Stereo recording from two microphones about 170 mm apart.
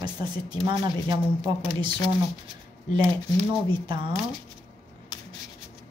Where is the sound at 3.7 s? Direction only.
25° right (ahead or behind).